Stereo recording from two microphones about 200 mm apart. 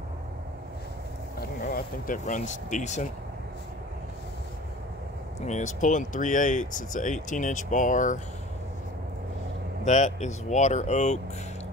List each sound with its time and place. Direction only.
1.7 s speech: 45° left (ahead or behind)
5.4 s speech: 35° left (ahead or behind)
9.8 s speech: 35° left (ahead or behind)